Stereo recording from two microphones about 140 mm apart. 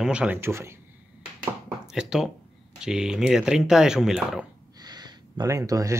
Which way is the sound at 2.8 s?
5° right (ahead or behind).